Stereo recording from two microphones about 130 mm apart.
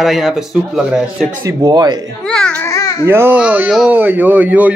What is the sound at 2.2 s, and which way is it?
Babbling, 5° left (ahead or behind).